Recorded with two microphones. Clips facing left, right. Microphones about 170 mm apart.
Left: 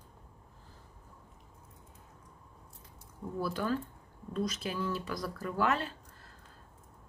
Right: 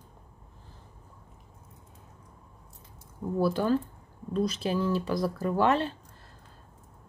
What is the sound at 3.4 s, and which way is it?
Speech, 30° right (ahead or behind).